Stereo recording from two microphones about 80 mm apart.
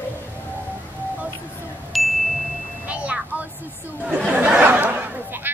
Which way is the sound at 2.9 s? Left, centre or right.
Centre.